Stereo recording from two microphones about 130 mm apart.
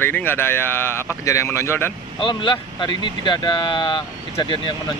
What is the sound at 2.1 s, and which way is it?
Speech, 35° left (ahead or behind).